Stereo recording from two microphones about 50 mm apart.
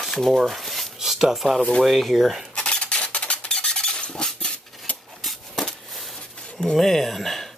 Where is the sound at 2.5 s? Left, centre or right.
Centre.